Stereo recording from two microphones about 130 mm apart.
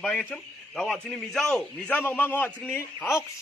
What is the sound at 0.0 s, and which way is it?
A man's voice, 5° left (ahead or behind).